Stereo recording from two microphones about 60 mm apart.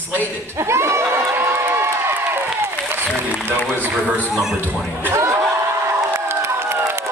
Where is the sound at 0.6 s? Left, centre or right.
Right.